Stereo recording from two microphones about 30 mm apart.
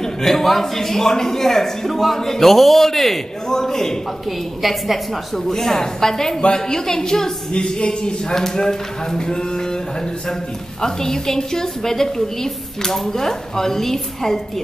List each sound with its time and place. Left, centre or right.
0.0 s a man's voice: centre
4.6 s a woman's voice: centre
5.5 s a man's voice: centre
7.5 s speech: left
10.8 s a man's voice: centre